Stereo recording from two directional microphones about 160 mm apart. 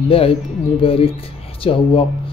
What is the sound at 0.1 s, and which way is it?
Speech, 35° left (ahead or behind).